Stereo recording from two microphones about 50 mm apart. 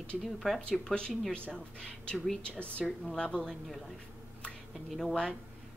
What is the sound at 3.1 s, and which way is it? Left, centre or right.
Speech, centre.